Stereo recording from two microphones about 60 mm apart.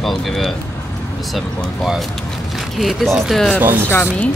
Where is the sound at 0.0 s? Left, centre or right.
Centre.